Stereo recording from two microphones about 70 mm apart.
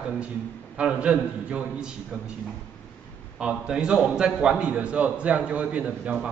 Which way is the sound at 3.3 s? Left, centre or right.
Centre.